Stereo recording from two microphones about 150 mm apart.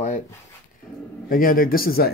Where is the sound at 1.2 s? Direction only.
70° left (ahead or behind).